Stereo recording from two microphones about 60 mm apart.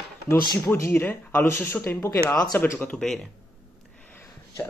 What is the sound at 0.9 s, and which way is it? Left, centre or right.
Speech, left.